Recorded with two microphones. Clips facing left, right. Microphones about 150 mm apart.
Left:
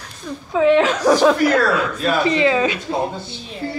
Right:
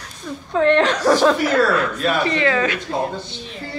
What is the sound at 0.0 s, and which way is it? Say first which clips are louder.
Speech: left 1 dB; 5° left (ahead or behind).